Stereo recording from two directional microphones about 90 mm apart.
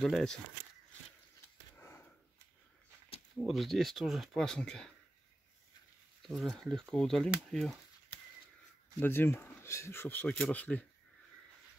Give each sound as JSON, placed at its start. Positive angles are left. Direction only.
{"t": 0.0, "sound": "speech", "side_deg": 5}
{"t": 1.8, "sound": "a sound", "side_deg": 30}
{"t": 3.3, "sound": "speech", "side_deg": 0}
{"t": 6.2, "sound": "speech", "side_deg": 0}
{"t": 9.0, "sound": "speech", "side_deg": 25}